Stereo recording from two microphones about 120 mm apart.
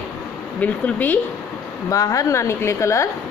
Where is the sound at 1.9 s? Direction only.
30° left (ahead or behind).